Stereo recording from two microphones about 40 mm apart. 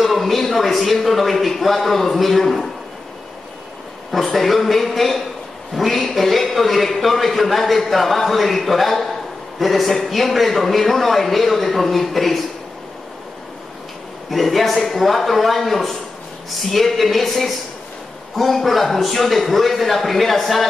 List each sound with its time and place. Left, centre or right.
0.0 s a man's voice: centre
4.1 s a man's voice: centre
14.3 s a man's voice: centre